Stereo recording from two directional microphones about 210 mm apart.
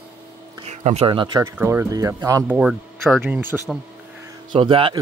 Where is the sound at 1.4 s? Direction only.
10° right (ahead or behind).